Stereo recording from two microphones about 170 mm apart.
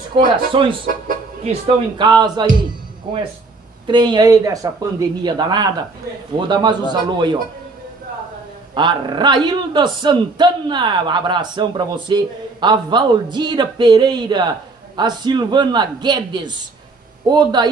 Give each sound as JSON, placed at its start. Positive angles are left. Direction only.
{"t": 0.1, "sound": "speech", "side_deg": -30}
{"t": 0.8, "sound": "music", "side_deg": -55}
{"t": 1.5, "sound": "speech", "side_deg": -25}
{"t": 3.8, "sound": "speech", "side_deg": -25}
{"t": 8.7, "sound": "speech", "side_deg": -25}